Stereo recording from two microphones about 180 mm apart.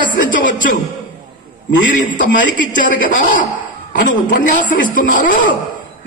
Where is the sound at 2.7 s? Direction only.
45° left (ahead or behind).